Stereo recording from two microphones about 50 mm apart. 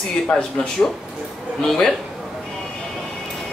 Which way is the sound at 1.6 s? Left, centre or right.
Centre.